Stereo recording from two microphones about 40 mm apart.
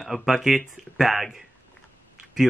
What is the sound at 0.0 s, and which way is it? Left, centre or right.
Speech, centre.